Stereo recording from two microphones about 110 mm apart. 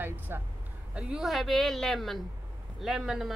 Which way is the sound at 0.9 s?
5° right (ahead or behind).